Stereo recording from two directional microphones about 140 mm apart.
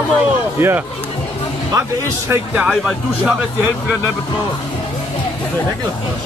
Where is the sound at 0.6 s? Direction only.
15° right (ahead or behind).